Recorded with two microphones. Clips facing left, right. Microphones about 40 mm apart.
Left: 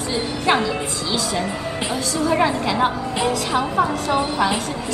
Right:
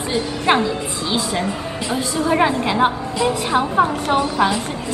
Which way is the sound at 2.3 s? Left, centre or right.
Right.